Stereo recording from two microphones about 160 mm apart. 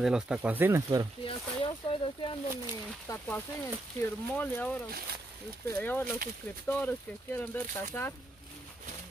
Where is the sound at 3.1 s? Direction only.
10° left (ahead or behind).